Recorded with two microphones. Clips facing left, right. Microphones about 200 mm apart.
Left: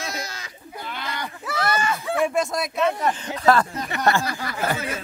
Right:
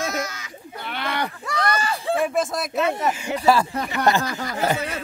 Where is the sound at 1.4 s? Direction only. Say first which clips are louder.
Left 2 dB; 5° left (ahead or behind).